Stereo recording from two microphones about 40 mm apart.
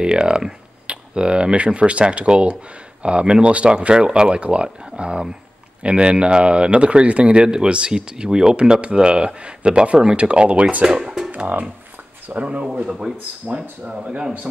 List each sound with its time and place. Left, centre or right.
0.0 s speech: right
10.9 s music: centre
12.3 s speech: right
12.6 s a man's voice: centre